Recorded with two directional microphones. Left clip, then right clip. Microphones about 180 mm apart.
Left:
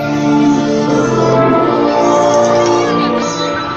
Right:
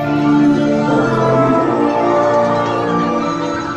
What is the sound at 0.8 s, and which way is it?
Music, 25° left (ahead or behind).